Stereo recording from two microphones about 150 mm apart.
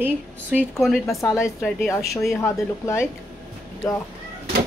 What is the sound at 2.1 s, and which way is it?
Speech, 20° left (ahead or behind).